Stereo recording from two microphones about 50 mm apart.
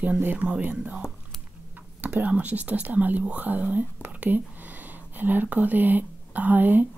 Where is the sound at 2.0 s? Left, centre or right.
Right.